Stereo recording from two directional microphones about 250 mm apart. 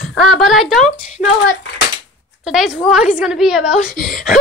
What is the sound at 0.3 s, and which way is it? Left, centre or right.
Speech, centre.